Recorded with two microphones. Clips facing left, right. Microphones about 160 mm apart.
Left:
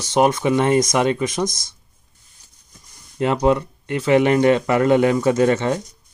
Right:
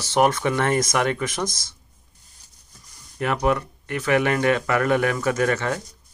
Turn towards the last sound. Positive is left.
turn(degrees=25)  # may be behind; listen again after turning